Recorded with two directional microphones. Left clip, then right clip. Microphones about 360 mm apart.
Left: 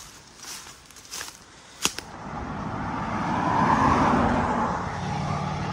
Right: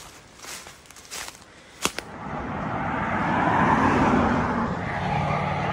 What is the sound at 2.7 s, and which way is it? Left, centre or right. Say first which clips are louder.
Vehicle: right 4 dB; centre.